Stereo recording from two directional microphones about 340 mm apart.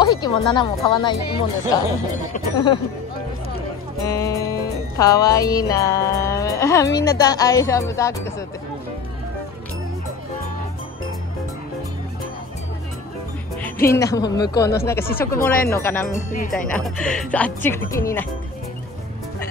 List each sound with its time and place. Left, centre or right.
0.0 s music: centre
4.0 s music: centre
13.6 s speech: centre
14.4 s music: centre
15.7 s speech: centre
16.3 s speech: left
16.5 s speech: centre